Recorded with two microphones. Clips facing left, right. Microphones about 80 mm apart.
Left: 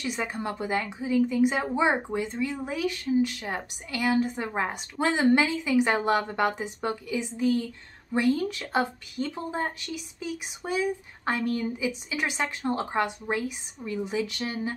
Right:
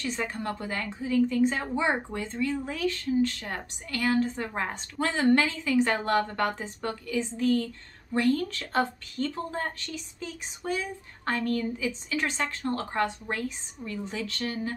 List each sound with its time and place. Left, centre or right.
0.0 s a woman's voice: centre